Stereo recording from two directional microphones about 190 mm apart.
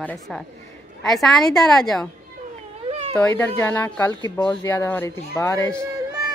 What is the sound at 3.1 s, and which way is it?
Speech, 15° left (ahead or behind).